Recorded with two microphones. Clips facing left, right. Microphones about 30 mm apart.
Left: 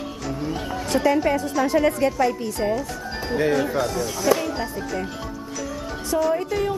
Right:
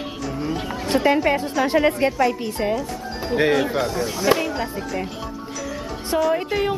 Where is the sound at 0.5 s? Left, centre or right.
Centre.